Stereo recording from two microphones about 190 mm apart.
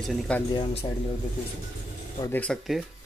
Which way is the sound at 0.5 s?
30° left (ahead or behind).